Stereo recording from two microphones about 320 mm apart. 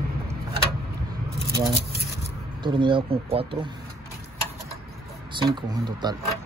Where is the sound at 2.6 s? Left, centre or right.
Centre.